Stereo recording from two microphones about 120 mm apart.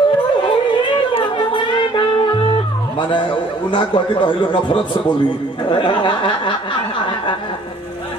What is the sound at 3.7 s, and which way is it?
A man's voice, 45° left (ahead or behind).